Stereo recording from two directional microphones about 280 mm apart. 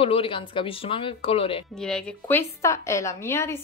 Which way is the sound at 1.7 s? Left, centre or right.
Centre.